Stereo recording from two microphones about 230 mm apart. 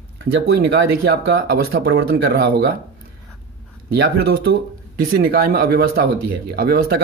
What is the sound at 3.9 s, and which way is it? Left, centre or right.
Speech, right.